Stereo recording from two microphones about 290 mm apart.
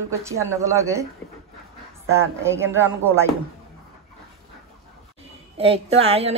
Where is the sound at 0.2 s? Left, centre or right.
Centre.